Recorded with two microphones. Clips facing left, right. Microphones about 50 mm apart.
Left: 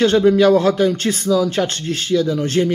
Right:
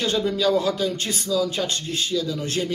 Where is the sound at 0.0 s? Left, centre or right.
Left.